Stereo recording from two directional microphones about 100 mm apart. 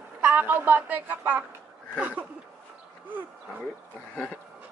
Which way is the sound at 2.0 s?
15° right (ahead or behind).